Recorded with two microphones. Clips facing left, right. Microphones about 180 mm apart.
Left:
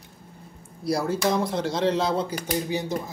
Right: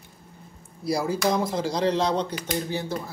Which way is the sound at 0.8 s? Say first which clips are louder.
Even; centre (ahead or behind).